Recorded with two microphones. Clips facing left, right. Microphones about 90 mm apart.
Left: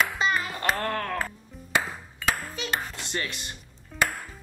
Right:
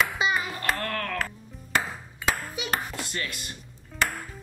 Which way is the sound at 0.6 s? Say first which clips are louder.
Left 2 dB; 25° left (ahead or behind).